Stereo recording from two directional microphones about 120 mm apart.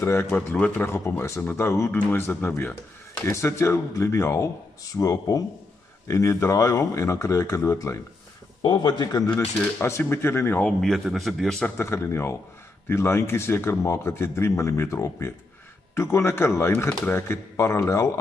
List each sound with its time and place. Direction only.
0.0 s a man's voice: 20° left (ahead or behind)
8.6 s speech: 40° left (ahead or behind)
9.3 s speech: 20° left (ahead or behind)
10.6 s speech: centre (ahead or behind)
11.8 s speech: 20° left (ahead or behind)